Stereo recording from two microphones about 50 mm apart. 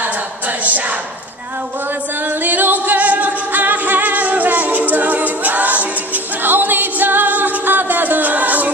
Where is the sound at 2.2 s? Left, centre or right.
Right.